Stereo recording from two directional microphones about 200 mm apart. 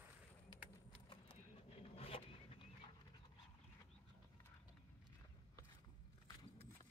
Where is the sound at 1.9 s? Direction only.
30° left (ahead or behind).